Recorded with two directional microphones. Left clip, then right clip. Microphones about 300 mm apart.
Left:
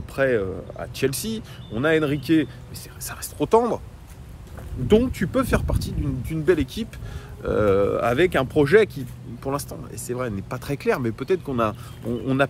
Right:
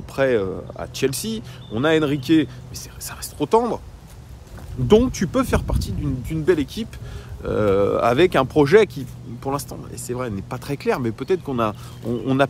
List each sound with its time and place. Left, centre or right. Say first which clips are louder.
0.1 s speech: right 2 dB; centre
4.8 s speech: right 3 dB; centre